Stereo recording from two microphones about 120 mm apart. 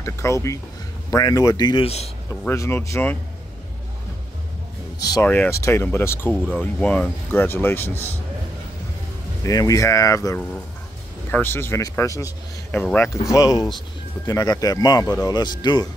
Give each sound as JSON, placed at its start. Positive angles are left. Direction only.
{"t": 0.0, "sound": "speech", "side_deg": 25}
{"t": 2.4, "sound": "speech", "side_deg": 20}
{"t": 5.2, "sound": "speech", "side_deg": 15}
{"t": 9.4, "sound": "speech", "side_deg": 30}
{"t": 12.7, "sound": "speech", "side_deg": 15}